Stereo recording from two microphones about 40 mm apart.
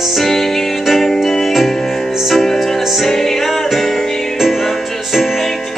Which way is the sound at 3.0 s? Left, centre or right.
Centre.